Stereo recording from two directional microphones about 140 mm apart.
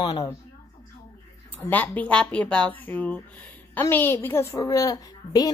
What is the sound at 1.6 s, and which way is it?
A woman's voice, 10° left (ahead or behind).